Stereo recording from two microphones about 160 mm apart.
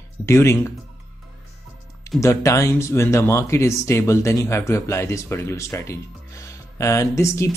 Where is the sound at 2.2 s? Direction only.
20° left (ahead or behind).